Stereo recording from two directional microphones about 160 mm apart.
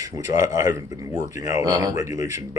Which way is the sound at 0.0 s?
20° right (ahead or behind).